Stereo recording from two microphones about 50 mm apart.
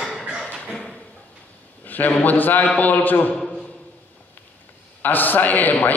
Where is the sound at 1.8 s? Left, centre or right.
Left.